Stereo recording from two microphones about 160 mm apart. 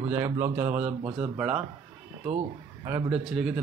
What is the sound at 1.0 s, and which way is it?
Speech, 35° right (ahead or behind).